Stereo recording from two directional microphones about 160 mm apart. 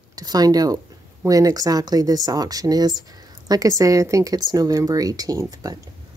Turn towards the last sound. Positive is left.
turn(degrees=-20)  # may be behind; listen again after turning